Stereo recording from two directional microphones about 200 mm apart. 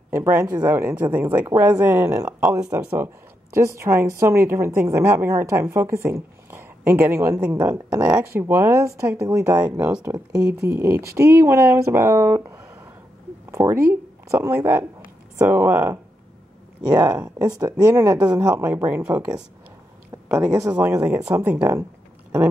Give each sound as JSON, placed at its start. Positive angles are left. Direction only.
{"t": 0.1, "sound": "a woman's voice", "side_deg": -15}